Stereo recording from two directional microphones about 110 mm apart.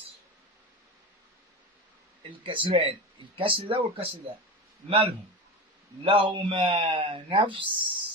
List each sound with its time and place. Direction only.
2.4 s speech: 50° right (ahead or behind)
6.0 s speech: 50° right (ahead or behind)